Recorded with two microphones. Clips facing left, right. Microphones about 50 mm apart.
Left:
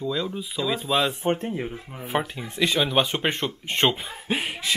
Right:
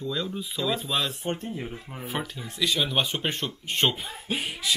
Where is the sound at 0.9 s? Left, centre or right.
Left.